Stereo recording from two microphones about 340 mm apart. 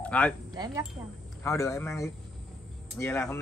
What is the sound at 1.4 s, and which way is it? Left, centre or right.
Speech, centre.